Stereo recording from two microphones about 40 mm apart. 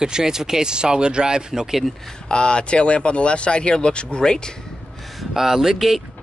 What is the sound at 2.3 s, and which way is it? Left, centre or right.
Speech, left.